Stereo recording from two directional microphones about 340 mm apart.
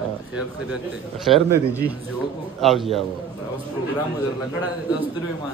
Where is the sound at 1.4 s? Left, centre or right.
Centre.